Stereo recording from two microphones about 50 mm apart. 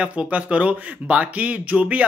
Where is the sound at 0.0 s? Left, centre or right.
Right.